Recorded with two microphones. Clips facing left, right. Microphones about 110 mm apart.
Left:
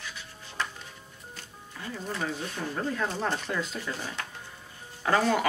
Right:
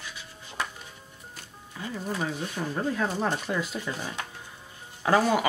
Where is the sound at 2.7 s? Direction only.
10° right (ahead or behind).